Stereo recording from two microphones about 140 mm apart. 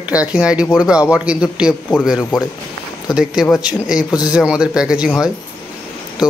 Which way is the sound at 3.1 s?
5° right (ahead or behind).